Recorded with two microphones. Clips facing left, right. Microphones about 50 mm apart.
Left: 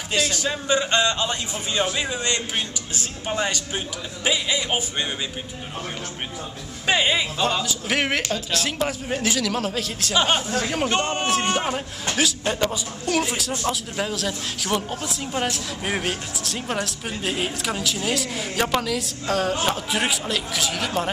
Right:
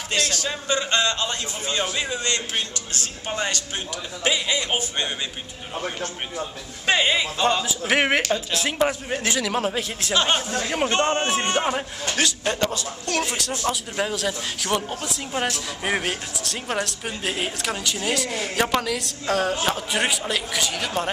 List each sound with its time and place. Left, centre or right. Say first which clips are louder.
0.1 s a man's voice: left 1 dB; centre
2.1 s a man's voice: left 1 dB; centre
3.3 s speech: left 2 dB; centre
6.9 s speech: even; centre
7.6 s speech: right 2 dB; centre
9.5 s speech: right 1 dB; centre
10.1 s speech: left 1 dB; centre
11.0 s a man's voice: right 3 dB; right
11.2 s speech: even; centre
12.1 s speech: left 1 dB; centre